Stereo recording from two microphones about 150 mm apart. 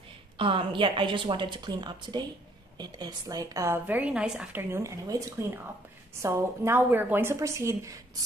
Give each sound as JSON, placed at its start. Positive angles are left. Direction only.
{"t": 0.4, "sound": "a woman's voice", "side_deg": -35}
{"t": 6.2, "sound": "a woman's voice", "side_deg": -20}